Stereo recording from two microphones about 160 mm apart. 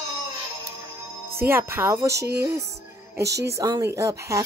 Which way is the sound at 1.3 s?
15° right (ahead or behind).